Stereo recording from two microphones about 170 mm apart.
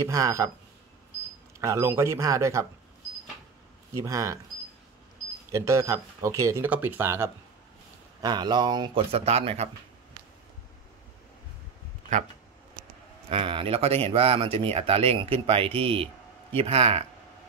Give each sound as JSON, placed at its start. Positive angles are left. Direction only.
{"t": 0.0, "sound": "speech", "side_deg": -20}
{"t": 1.6, "sound": "speech", "side_deg": -15}
{"t": 4.0, "sound": "speech", "side_deg": -20}
{"t": 5.5, "sound": "speech", "side_deg": -20}
{"t": 8.2, "sound": "speech", "side_deg": -25}
{"t": 13.3, "sound": "speech", "side_deg": -30}